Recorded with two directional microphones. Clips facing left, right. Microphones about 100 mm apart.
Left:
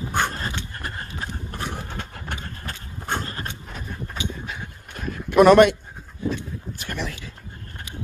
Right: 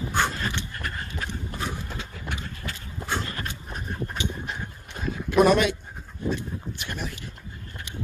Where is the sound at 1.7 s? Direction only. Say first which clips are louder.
Left 2 dB; 55° left (ahead or behind).